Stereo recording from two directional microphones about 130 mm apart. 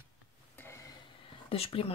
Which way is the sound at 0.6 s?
20° left (ahead or behind).